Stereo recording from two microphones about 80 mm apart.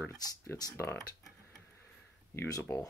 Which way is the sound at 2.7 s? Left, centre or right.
Left.